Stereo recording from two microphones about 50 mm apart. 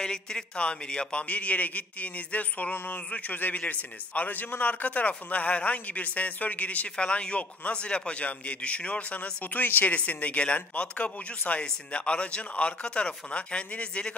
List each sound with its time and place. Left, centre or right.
0.0 s a man's voice: centre